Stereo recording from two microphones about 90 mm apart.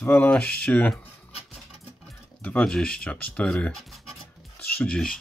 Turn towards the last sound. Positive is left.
turn(degrees=10)  # may be behind; listen again after turning